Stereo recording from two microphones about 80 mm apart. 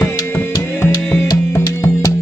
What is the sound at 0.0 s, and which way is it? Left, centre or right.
Music, left.